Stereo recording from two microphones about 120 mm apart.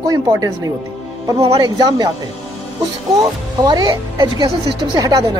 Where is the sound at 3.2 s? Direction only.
35° right (ahead or behind).